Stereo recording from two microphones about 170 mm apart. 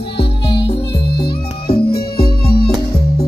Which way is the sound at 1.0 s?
70° left (ahead or behind).